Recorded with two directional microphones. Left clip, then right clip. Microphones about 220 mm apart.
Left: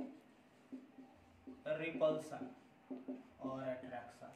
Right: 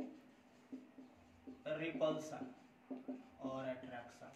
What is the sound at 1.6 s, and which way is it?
Speech, 10° left (ahead or behind).